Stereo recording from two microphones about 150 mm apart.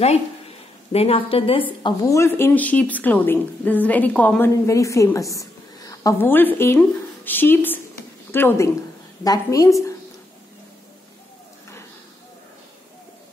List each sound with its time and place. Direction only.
0.9 s a woman's voice: 40° left (ahead or behind)
1.8 s speech: 30° left (ahead or behind); by 4.5 s 10° left (ahead or behind)
4.6 s a woman's voice: 20° left (ahead or behind)